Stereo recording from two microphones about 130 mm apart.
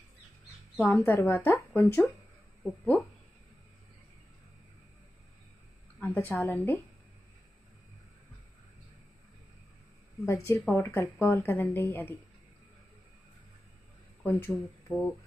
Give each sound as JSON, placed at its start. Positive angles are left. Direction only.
{"t": 0.7, "sound": "speech", "side_deg": 15}
{"t": 2.6, "sound": "speech", "side_deg": 0}
{"t": 5.9, "sound": "a woman's voice", "side_deg": 15}
{"t": 10.2, "sound": "speech", "side_deg": 20}
{"t": 14.2, "sound": "speech", "side_deg": 15}